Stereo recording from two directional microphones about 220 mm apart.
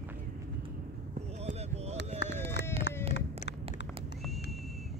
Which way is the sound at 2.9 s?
50° left (ahead or behind).